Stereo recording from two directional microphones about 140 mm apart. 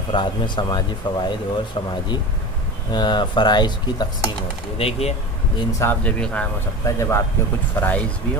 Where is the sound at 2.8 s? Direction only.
30° left (ahead or behind).